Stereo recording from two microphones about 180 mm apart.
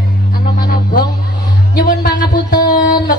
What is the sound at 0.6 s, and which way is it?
Music, 55° left (ahead or behind).